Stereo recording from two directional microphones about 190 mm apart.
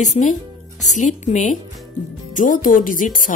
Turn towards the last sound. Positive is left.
turn(degrees=45)  # may be behind; listen again after turning